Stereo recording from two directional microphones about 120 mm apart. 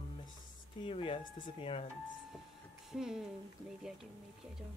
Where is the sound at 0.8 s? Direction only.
50° left (ahead or behind).